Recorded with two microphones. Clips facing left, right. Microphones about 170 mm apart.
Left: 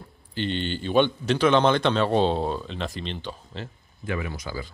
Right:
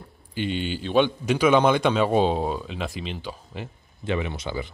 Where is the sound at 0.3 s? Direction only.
10° right (ahead or behind).